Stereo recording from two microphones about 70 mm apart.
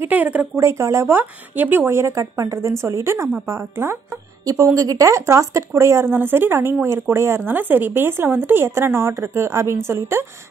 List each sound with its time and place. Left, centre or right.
0.1 s speech: right
0.6 s speech: right
1.1 s speech: right
4.5 s speech: right